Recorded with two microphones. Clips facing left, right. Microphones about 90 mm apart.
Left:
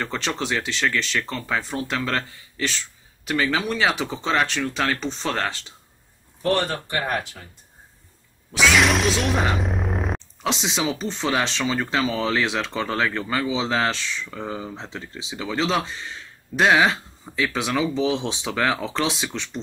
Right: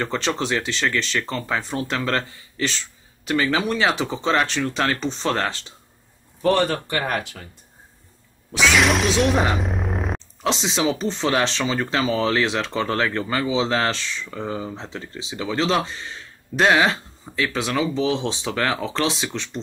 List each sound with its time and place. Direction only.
0.0 s speech: centre (ahead or behind)
6.9 s speech: 85° right
8.5 s speech: centre (ahead or behind)